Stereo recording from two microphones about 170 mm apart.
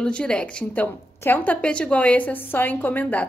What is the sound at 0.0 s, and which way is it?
A woman's voice, 5° left (ahead or behind).